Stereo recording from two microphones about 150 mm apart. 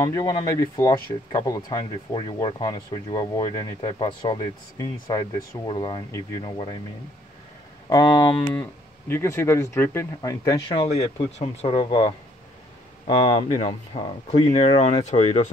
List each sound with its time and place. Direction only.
0.0 s speech: 25° left (ahead or behind)
7.9 s speech: 25° left (ahead or behind)
9.1 s speech: 15° left (ahead or behind)
10.7 s speech: 40° left (ahead or behind)
13.9 s speech: 40° left (ahead or behind)